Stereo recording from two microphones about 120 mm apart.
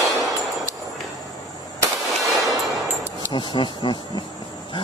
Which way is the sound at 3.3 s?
40° left (ahead or behind).